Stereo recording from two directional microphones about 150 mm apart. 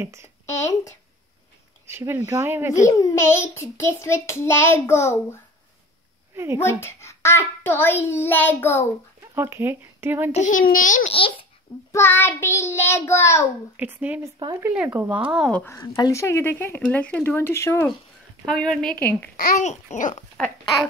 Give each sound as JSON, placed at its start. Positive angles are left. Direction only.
{"t": 0.0, "sound": "speech", "side_deg": -20}
{"t": 0.5, "sound": "speech", "side_deg": 20}
{"t": 1.9, "sound": "speech", "side_deg": -15}
{"t": 2.9, "sound": "child singing", "side_deg": 20}
{"t": 6.3, "sound": "speech", "side_deg": -15}
{"t": 6.8, "sound": "child singing", "side_deg": 15}
{"t": 9.3, "sound": "speech", "side_deg": -15}
{"t": 10.3, "sound": "a child's voice", "side_deg": 60}
{"t": 11.1, "sound": "a child's voice", "side_deg": 35}
{"t": 11.9, "sound": "child singing", "side_deg": 15}
{"t": 13.7, "sound": "speech", "side_deg": -10}
{"t": 15.5, "sound": "child singing", "side_deg": 15}
{"t": 18.4, "sound": "child singing", "side_deg": 0}
{"t": 19.3, "sound": "babbling", "side_deg": 60}